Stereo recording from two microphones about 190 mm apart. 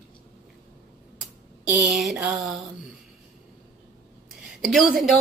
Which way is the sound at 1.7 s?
Centre (ahead or behind).